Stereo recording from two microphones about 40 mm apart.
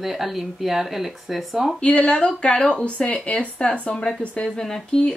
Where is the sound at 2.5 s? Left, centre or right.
Left.